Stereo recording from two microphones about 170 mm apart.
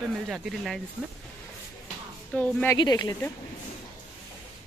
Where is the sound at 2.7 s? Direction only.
25° left (ahead or behind).